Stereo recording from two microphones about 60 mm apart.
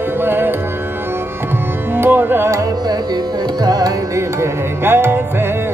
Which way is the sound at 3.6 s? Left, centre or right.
Right.